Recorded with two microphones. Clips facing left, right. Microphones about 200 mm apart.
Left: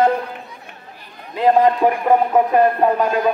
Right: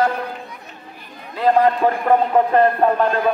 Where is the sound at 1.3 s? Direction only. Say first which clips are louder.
Left 1 dB; 20° left (ahead or behind).